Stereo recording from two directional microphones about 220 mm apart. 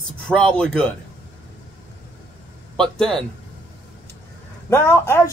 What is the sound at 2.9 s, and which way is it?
Speech, 5° left (ahead or behind).